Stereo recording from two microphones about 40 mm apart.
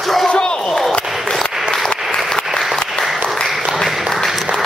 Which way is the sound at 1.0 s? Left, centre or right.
Centre.